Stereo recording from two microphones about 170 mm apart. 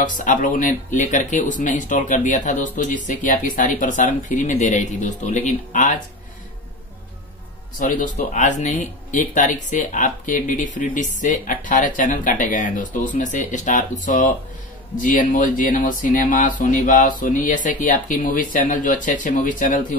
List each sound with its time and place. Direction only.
0.0 s speech: 50° left (ahead or behind)
7.8 s speech: 50° left (ahead or behind)